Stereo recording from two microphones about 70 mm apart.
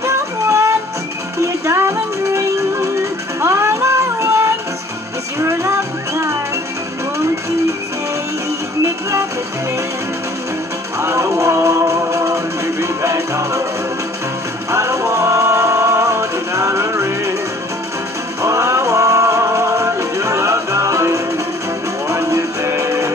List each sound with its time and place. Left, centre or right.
0.0 s music: right
11.0 s music: right
14.7 s music: right
18.4 s music: right